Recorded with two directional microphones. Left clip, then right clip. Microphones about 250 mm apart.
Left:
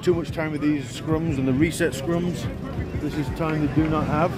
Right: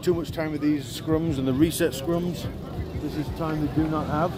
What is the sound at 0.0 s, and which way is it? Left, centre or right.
Speech, centre.